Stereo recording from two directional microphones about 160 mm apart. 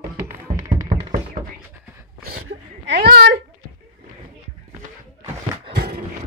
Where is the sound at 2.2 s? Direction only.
90° right.